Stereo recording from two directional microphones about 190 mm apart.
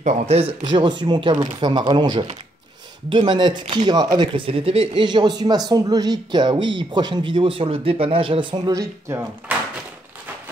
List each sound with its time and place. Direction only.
0.0 s speech: 35° right (ahead or behind); by 9.2 s 20° right (ahead or behind)